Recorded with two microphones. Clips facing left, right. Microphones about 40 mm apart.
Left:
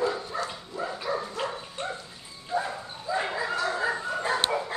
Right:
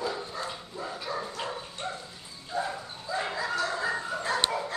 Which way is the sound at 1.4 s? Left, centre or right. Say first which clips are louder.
Left 2 dB; centre.